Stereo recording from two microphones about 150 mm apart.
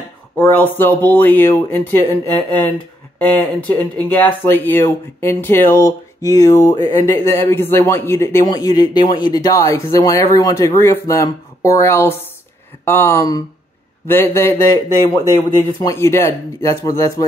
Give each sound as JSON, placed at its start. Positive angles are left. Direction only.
{"t": 0.4, "sound": "speech", "side_deg": 15}